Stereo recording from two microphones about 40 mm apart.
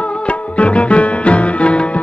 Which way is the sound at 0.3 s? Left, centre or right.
Left.